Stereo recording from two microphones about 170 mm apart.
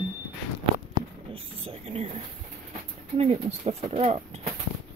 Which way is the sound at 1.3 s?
35° right (ahead or behind).